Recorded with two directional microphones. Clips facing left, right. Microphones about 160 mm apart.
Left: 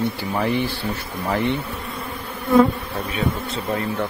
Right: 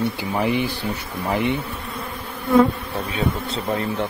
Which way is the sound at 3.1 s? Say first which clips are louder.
Even; 30° right (ahead or behind).